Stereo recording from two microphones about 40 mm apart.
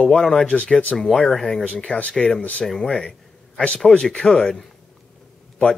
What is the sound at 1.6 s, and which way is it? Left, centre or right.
Speech, left.